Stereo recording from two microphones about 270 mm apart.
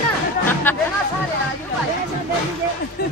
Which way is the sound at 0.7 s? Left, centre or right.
Centre.